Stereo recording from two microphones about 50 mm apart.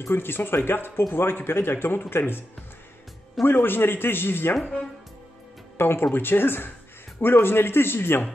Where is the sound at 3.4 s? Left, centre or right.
Left.